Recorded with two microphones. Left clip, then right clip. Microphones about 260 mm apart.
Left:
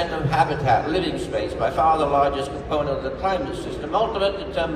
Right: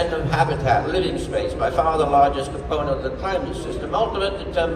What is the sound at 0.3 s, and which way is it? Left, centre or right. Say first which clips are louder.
A man's voice: left 2 dB; centre.